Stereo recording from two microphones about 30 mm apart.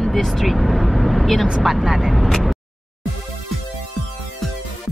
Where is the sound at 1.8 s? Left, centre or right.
Centre.